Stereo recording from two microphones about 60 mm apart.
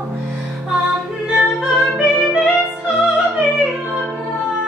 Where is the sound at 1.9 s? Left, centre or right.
Centre.